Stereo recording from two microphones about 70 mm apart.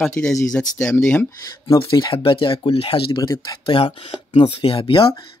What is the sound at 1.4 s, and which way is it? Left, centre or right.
Speech, left.